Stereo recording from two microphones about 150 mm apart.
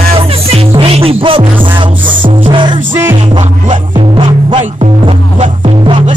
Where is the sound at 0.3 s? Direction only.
40° right (ahead or behind).